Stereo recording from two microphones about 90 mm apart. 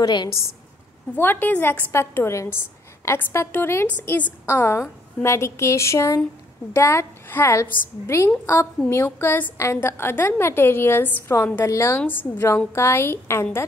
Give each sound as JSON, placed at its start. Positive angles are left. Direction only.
{"t": 0.0, "sound": "a woman's voice", "side_deg": 55}
{"t": 1.1, "sound": "a woman's voice", "side_deg": 20}
{"t": 12.1, "sound": "a woman's voice", "side_deg": 20}